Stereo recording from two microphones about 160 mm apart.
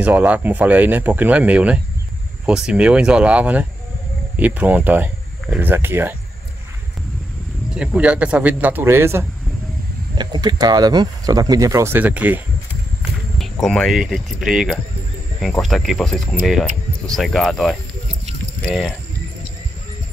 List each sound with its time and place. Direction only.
0.0 s speech: 10° right (ahead or behind)
7.7 s speech: 5° right (ahead or behind)
10.1 s speech: 25° right (ahead or behind); by 12.4 s 10° right (ahead or behind)
13.4 s speech: centre (ahead or behind)